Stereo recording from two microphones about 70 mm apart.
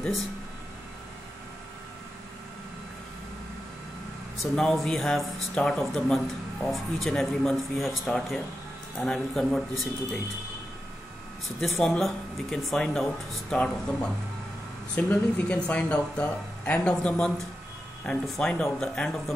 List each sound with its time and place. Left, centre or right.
4.4 s speech: centre
11.6 s speech: centre
15.0 s speech: left
18.2 s speech: centre